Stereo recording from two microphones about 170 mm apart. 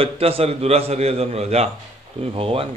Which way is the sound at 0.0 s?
35° right (ahead or behind).